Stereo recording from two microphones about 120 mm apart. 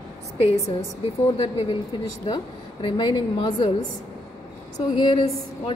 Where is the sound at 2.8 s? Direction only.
40° left (ahead or behind).